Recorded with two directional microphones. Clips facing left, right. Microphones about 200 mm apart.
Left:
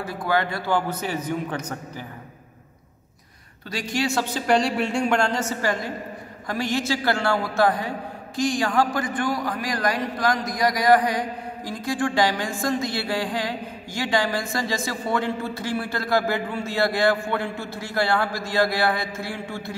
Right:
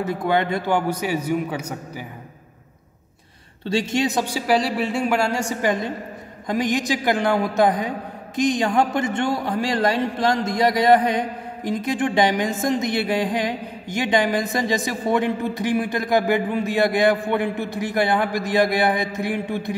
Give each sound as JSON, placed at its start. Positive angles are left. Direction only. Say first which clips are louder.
{"t": 0.0, "sound": "a man's voice", "louder": "right 3 dB", "side_deg": -20}
{"t": 3.6, "sound": "a man's voice", "louder": "right 5 dB", "side_deg": -25}